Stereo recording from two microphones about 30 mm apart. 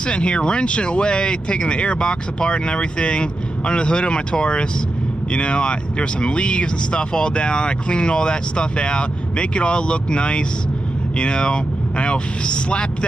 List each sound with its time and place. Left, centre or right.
0.0 s speech: left